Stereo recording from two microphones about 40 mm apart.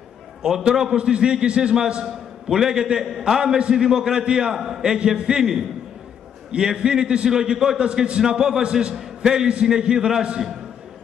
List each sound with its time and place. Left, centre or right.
0.4 s a man's voice: centre